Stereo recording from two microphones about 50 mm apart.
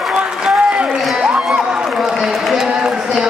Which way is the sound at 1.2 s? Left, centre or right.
Centre.